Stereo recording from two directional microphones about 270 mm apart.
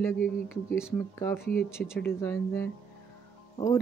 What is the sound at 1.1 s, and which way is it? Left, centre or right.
Speech, centre.